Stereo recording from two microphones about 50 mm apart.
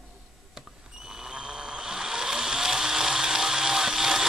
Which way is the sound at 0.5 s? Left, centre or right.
Centre.